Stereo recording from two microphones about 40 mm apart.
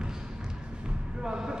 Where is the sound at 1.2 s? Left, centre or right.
Centre.